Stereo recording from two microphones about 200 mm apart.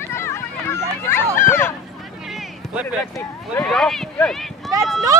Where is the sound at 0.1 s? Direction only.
15° left (ahead or behind).